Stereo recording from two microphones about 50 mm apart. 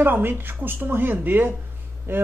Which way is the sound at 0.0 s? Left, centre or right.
Right.